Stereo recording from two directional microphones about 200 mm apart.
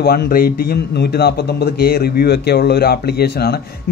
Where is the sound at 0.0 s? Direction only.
50° left (ahead or behind).